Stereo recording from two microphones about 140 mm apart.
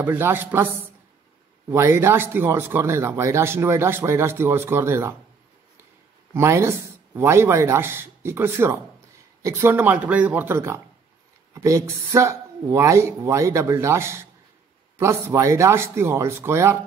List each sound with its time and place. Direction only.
0.0 s speech: 15° right (ahead or behind)
1.7 s speech: 15° right (ahead or behind)
6.3 s speech: 20° right (ahead or behind)